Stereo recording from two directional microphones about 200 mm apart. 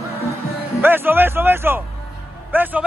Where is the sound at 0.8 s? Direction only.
10° right (ahead or behind).